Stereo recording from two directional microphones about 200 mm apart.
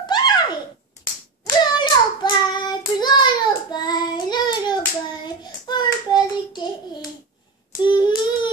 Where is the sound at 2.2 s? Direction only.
20° left (ahead or behind).